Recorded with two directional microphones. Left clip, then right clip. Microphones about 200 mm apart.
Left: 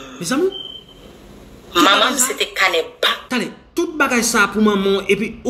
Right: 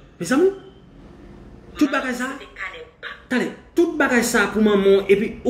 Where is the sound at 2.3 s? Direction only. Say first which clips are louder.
Left 16 dB; 50° left (ahead or behind).